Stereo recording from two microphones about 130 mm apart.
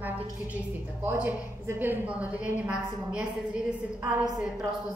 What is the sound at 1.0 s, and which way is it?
A woman's voice, 15° right (ahead or behind).